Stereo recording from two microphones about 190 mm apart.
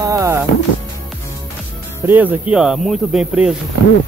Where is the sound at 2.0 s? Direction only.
10° right (ahead or behind).